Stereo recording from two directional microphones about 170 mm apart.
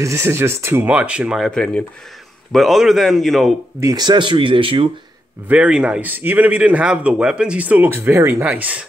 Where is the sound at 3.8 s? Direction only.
20° right (ahead or behind).